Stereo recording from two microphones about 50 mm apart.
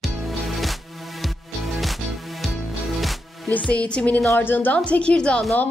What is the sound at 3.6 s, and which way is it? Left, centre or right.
Speech, left.